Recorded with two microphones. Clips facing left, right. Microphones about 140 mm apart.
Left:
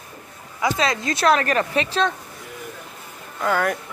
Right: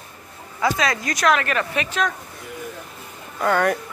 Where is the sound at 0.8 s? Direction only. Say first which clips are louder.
Left 1 dB; 25° left (ahead or behind).